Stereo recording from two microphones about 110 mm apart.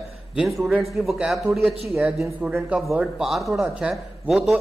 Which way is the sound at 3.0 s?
5° right (ahead or behind).